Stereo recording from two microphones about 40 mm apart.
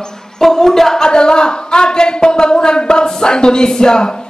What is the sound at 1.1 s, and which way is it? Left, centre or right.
Speech, left.